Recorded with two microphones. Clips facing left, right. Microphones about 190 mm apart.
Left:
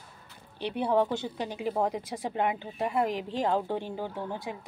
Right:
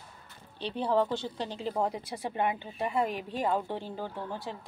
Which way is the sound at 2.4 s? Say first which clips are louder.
Left 1 dB; 15° left (ahead or behind).